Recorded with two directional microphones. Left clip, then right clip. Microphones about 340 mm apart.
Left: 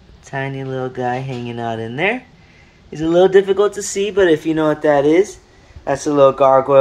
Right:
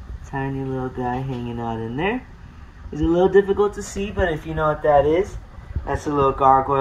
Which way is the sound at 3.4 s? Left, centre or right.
Left.